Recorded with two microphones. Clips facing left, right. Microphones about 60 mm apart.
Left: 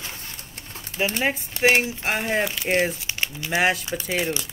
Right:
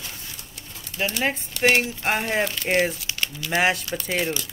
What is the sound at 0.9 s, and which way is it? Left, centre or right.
Speech, left.